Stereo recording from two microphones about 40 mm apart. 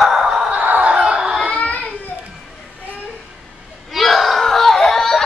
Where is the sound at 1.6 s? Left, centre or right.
Left.